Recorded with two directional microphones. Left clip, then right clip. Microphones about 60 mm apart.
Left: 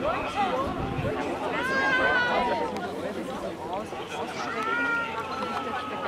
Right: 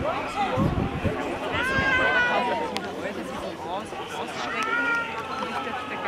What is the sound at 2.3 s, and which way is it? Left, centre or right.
Run, right.